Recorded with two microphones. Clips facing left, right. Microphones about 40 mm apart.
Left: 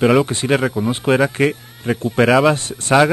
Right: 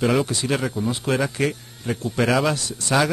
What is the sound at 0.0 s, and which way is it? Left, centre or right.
Speech, left.